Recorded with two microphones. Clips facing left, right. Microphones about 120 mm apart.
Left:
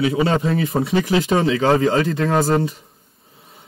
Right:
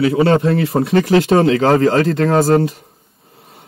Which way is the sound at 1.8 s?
65° right (ahead or behind).